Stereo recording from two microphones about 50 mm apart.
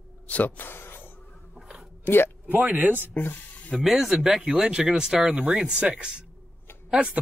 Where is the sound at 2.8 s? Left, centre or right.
Right.